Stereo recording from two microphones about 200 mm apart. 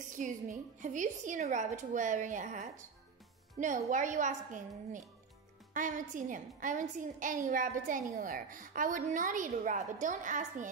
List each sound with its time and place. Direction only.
0.1 s a woman's voice: 40° right (ahead or behind)